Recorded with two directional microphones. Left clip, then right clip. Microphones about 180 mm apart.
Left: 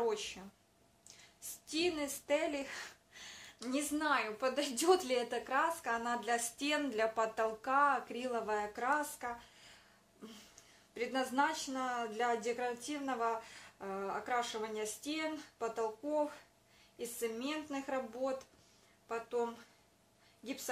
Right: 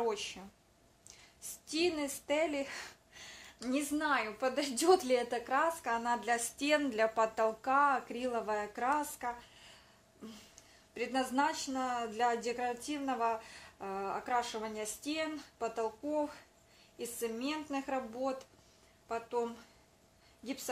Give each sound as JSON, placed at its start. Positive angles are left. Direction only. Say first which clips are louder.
{"t": 0.0, "sound": "speech", "louder": "right 1 dB", "side_deg": -35}
{"t": 1.0, "sound": "a sound", "louder": "right 2 dB", "side_deg": -35}
{"t": 3.6, "sound": "a woman's voice", "louder": "right 2 dB", "side_deg": -30}
{"t": 11.0, "sound": "a woman's voice", "louder": "right 1 dB", "side_deg": -30}